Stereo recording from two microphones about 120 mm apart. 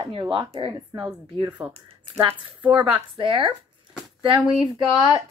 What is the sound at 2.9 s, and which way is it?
Speech, 45° right (ahead or behind).